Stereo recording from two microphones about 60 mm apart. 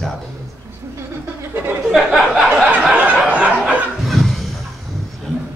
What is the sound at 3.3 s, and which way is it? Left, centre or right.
Snicker, right.